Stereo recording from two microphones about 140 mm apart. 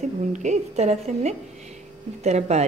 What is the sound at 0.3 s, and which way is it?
A woman's voice, 60° right (ahead or behind).